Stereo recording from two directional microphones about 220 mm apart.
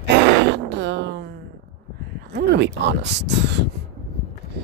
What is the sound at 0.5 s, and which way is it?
Speech, 50° right (ahead or behind).